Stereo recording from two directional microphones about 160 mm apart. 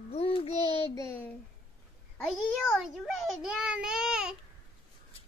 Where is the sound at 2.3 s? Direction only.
Centre (ahead or behind).